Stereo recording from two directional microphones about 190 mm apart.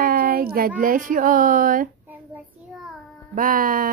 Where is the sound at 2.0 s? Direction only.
10° right (ahead or behind).